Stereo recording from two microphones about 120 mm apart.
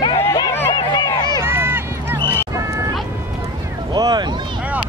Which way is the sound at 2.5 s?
25° right (ahead or behind).